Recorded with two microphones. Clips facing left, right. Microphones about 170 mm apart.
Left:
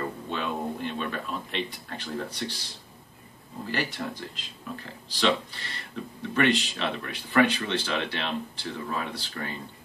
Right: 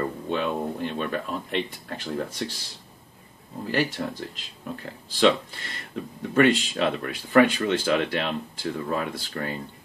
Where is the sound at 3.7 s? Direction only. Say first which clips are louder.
Right 5 dB; 45° right (ahead or behind).